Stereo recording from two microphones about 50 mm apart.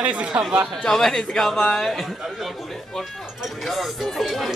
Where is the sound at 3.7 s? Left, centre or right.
Centre.